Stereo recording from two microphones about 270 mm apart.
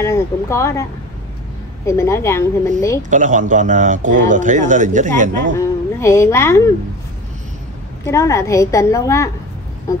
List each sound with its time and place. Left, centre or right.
0.0 s a woman's voice: centre
1.9 s a woman's voice: centre
3.1 s a man's voice: right
5.6 s a woman's voice: centre
8.0 s a woman's voice: centre